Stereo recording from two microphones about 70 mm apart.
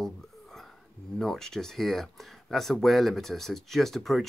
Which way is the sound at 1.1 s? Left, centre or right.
Centre.